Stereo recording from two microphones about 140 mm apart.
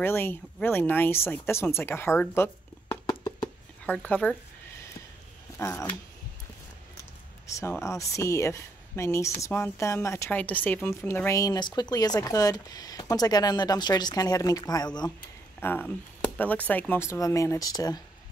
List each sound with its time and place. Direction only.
0.0 s speech: 15° left (ahead or behind)
3.1 s a sound: 35° left (ahead or behind)
3.8 s speech: 10° left (ahead or behind)
5.6 s speech: 20° left (ahead or behind)
7.4 s speech: 20° left (ahead or behind)
15.6 s speech: 15° left (ahead or behind)